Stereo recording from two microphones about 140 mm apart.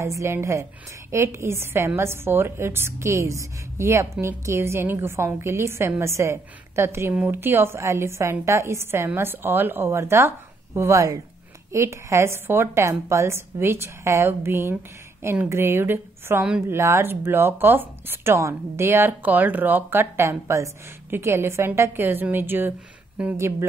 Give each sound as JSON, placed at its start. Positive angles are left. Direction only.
{"t": 0.0, "sound": "a woman's voice", "side_deg": -20}